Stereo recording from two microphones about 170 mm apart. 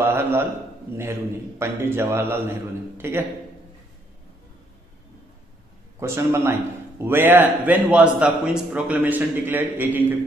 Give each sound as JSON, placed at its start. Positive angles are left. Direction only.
{"t": 0.0, "sound": "a sound", "side_deg": -15}
{"t": 0.9, "sound": "a man's voice", "side_deg": -70}
{"t": 1.6, "sound": "a man's voice", "side_deg": -15}
{"t": 5.9, "sound": "a man's voice", "side_deg": -15}